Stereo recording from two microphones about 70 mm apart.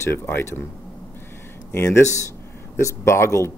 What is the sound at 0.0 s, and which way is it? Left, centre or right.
Speech, left.